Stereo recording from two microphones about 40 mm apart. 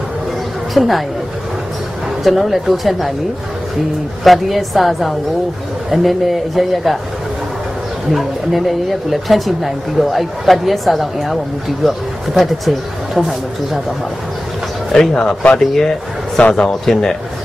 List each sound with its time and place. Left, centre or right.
0.7 s speech: centre
2.2 s speech: centre
4.2 s speech: centre
8.1 s speech: centre
15.0 s speech: centre
16.4 s a man's voice: left
16.8 s speech: centre